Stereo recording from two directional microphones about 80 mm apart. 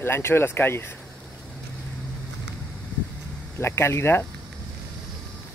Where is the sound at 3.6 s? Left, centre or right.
Left.